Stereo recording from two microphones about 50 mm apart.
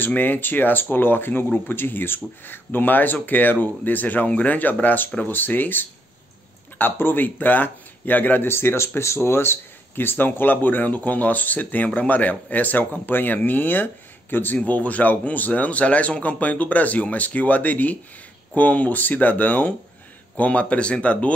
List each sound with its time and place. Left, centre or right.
0.0 s speech: left
8.5 s speech: left
14.6 s speech: left